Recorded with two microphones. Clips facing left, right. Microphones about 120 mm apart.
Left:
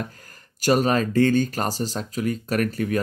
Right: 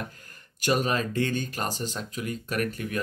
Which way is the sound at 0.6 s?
40° left (ahead or behind).